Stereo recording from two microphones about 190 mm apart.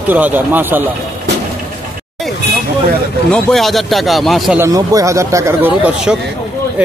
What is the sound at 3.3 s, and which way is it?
A man's voice, centre (ahead or behind).